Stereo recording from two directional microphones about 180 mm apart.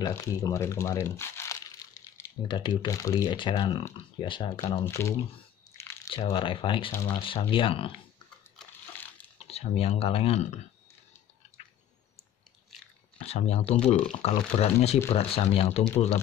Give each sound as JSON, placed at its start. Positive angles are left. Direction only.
{"t": 0.0, "sound": "speech", "side_deg": 20}
{"t": 2.4, "sound": "speech", "side_deg": 25}
{"t": 4.8, "sound": "speech", "side_deg": 15}
{"t": 6.1, "sound": "speech", "side_deg": 30}
{"t": 6.9, "sound": "speech", "side_deg": 15}
{"t": 7.2, "sound": "speech", "side_deg": 30}
{"t": 9.4, "sound": "speech", "side_deg": 35}
{"t": 12.7, "sound": "biting", "side_deg": 35}
{"t": 13.3, "sound": "speech", "side_deg": 35}